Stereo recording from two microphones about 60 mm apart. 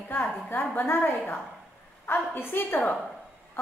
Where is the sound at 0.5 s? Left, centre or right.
Left.